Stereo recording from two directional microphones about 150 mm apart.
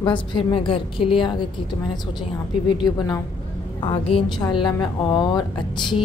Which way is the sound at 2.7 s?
30° left (ahead or behind).